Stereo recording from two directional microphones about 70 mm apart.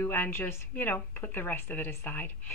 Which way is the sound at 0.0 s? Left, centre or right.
Left.